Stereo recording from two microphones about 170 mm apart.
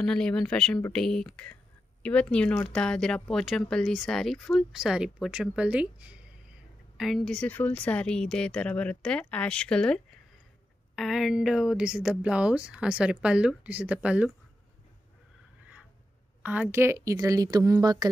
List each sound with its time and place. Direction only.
0.0 s a woman's voice: 5° left (ahead or behind)
16.4 s speech: 10° right (ahead or behind)